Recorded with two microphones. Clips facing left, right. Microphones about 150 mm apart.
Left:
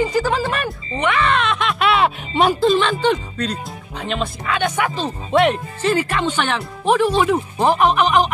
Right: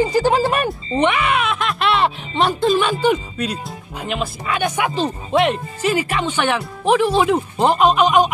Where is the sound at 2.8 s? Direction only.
10° right (ahead or behind).